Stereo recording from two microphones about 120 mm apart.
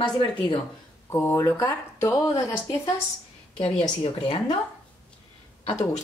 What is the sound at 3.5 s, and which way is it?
A woman's voice, 50° left (ahead or behind).